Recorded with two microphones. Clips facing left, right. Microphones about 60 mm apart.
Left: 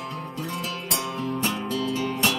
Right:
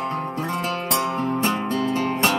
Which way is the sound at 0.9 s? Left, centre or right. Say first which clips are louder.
Right 5 dB; right.